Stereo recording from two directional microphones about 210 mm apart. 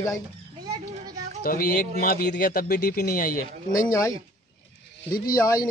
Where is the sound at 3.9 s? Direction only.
15° left (ahead or behind).